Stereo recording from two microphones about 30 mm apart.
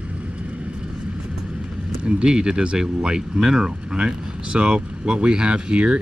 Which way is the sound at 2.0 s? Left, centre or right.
Right.